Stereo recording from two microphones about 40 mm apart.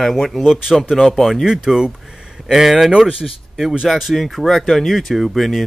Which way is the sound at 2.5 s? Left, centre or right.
Centre.